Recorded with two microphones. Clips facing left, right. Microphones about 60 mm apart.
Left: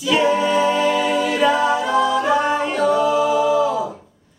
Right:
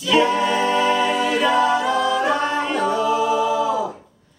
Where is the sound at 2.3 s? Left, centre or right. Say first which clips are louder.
Left 2 dB; centre.